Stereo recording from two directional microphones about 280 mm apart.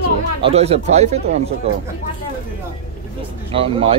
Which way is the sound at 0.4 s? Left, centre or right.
Right.